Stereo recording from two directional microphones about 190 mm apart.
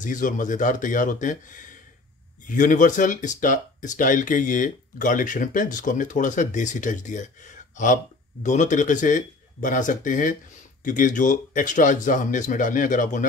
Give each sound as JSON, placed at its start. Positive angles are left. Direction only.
{"t": 0.0, "sound": "speech", "side_deg": 45}